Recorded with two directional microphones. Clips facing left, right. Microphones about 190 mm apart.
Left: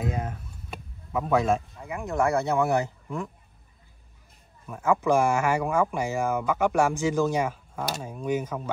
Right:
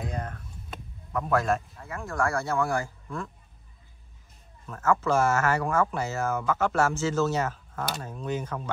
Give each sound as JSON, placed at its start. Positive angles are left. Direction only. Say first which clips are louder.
{"t": 0.0, "sound": "a sound", "louder": "left 4 dB", "side_deg": 5}
{"t": 1.3, "sound": "a man's voice", "louder": "left 2 dB", "side_deg": 0}
{"t": 1.8, "sound": "speech", "louder": "left 3 dB", "side_deg": 15}
{"t": 4.6, "sound": "speech", "louder": "left 2 dB", "side_deg": 15}